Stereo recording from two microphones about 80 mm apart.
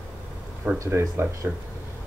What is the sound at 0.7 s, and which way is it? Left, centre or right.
Speech, right.